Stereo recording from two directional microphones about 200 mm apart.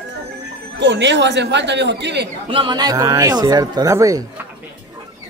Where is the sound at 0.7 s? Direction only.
60° right (ahead or behind).